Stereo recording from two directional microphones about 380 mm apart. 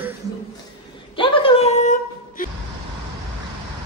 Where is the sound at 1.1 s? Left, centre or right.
Centre.